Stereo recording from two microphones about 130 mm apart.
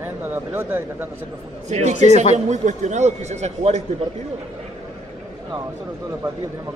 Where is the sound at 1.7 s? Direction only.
60° right (ahead or behind).